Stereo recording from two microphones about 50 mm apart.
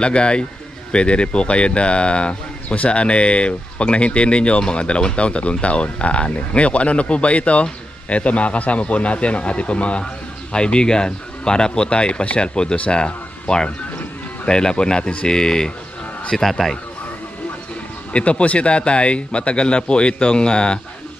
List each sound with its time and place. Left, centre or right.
0.0 s a man's voice: centre
18.1 s speech: left